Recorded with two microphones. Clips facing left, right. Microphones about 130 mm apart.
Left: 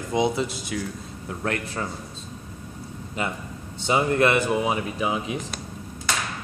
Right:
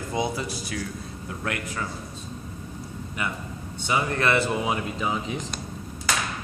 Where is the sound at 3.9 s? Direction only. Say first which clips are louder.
Left 4 dB; 25° left (ahead or behind); by 5.6 s 10° left (ahead or behind).